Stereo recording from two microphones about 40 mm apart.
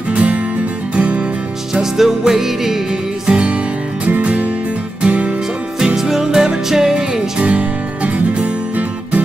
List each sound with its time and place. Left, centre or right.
0.1 s music: right
1.7 s music: centre
3.3 s music: right
5.9 s music: centre
7.4 s music: right